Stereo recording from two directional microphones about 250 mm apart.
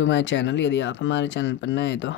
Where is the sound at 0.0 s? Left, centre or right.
Left.